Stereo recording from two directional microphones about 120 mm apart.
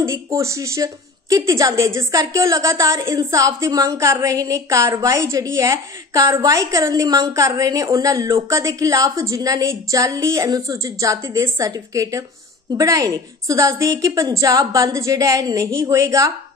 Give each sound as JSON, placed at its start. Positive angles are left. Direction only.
{"t": 0.0, "sound": "a woman's voice", "side_deg": -25}